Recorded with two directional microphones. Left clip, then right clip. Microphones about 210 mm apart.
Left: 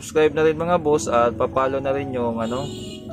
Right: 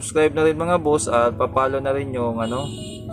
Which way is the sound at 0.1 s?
Centre (ahead or behind).